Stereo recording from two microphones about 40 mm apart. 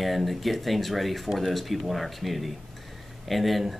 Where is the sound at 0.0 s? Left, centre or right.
Centre.